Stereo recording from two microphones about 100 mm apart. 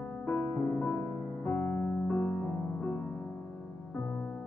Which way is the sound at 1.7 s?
15° left (ahead or behind).